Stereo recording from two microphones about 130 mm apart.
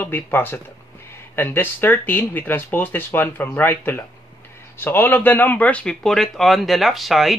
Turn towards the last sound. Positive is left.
turn(degrees=0)  # may be behind; listen again after turning